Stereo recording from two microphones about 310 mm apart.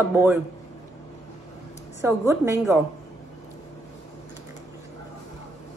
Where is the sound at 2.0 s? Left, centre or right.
Centre.